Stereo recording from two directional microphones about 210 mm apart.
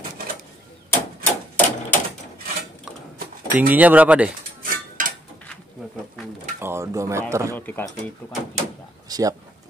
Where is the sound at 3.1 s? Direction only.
45° right (ahead or behind).